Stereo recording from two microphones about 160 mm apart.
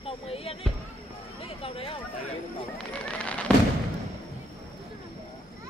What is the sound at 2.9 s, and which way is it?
Horse, 5° left (ahead or behind).